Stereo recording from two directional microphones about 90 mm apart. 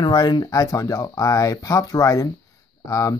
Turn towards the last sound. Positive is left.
turn(degrees=40)  # may be behind; listen again after turning